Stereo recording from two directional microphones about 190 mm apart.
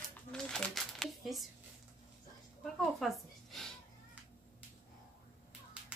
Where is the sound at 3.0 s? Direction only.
Centre (ahead or behind).